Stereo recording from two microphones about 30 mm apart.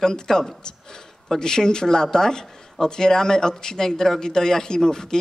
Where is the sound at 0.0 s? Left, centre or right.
Centre.